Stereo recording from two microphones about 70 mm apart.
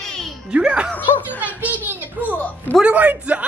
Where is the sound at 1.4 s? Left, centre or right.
Right.